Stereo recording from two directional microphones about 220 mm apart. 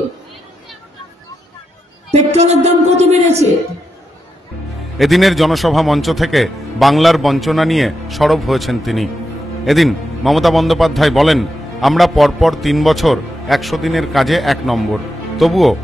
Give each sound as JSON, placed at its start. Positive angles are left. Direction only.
{"t": 2.3, "sound": "speech", "side_deg": -30}
{"t": 4.9, "sound": "a man's voice", "side_deg": 0}